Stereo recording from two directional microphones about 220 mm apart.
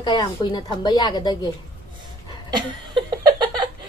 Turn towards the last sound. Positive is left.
turn(degrees=-20)  # may be behind; listen again after turning